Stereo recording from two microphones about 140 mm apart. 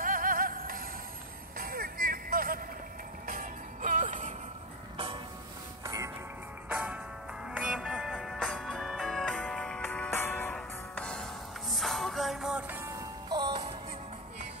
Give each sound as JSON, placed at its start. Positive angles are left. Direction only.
{"t": 0.0, "sound": "music", "side_deg": -85}
{"t": 3.3, "sound": "music", "side_deg": -75}
{"t": 4.9, "sound": "music", "side_deg": -40}
{"t": 6.7, "sound": "music", "side_deg": -5}
{"t": 12.8, "sound": "music", "side_deg": -25}